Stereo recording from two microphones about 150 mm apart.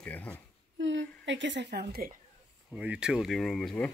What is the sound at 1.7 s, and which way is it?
Speech, 90° right.